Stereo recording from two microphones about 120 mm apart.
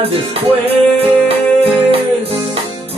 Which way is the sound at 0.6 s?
55° right (ahead or behind).